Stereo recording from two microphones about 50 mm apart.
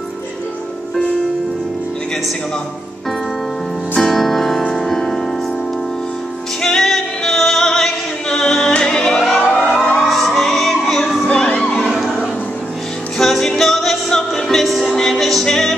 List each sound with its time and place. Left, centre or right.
3.9 s music: centre
6.6 s music: centre
13.2 s music: centre